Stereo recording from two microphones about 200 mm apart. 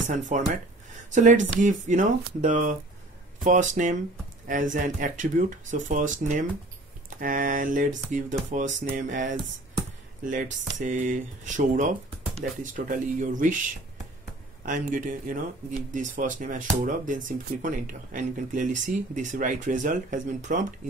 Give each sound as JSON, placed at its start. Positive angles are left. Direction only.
{"t": 0.1, "sound": "speech", "side_deg": -40}
{"t": 10.8, "sound": "speech", "side_deg": -40}
{"t": 14.6, "sound": "speech", "side_deg": -40}